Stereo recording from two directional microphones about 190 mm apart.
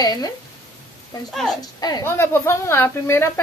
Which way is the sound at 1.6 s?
20° left (ahead or behind).